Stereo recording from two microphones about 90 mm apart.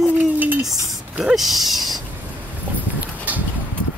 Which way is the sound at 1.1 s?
5° right (ahead or behind).